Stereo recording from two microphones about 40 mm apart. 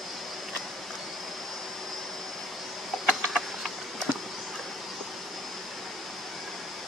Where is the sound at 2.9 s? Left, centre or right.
Centre.